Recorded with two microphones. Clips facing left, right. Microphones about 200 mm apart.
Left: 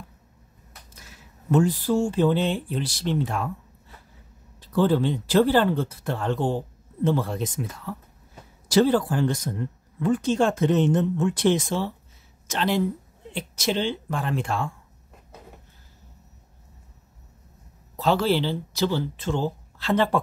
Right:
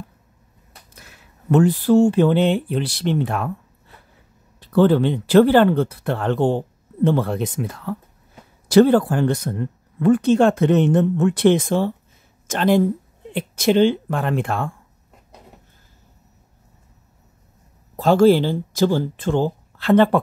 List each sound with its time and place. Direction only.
0.9 s speech: 60° right (ahead or behind)
4.6 s speech: 65° right (ahead or behind)
17.9 s speech: 45° right (ahead or behind)